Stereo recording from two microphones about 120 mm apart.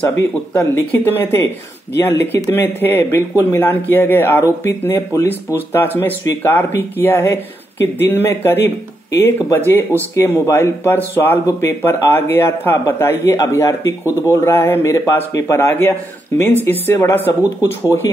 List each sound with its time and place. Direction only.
0.6 s speech: 15° left (ahead or behind)